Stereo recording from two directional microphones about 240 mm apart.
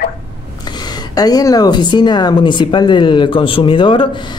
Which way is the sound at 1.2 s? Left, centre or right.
Centre.